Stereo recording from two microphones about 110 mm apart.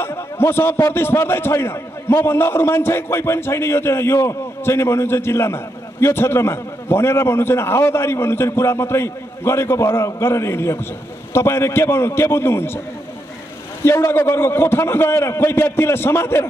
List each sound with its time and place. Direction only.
0.0 s a man's voice: 20° left (ahead or behind)
13.8 s a man's voice: 25° left (ahead or behind)